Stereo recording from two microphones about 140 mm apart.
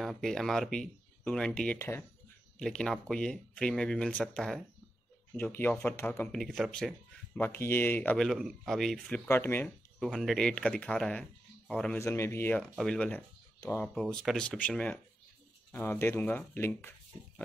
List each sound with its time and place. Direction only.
0.0 s speech: centre (ahead or behind)
2.6 s speech: 5° left (ahead or behind)
7.4 s speech: 15° left (ahead or behind)
8.3 s speech: centre (ahead or behind)
9.3 s speech: 15° left (ahead or behind)
9.9 s speech: centre (ahead or behind)
12.0 s speech: 20° left (ahead or behind)
13.6 s speech: 15° left (ahead or behind)
13.9 s speech: centre (ahead or behind)